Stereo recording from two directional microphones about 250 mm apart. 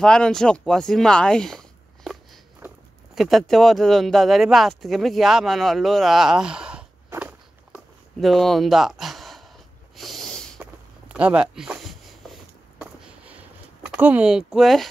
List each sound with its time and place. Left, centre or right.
0.0 s speech: centre
2.6 s a sound: centre
3.2 s speech: centre
9.9 s snort: centre
10.6 s walk: centre
13.9 s speech: centre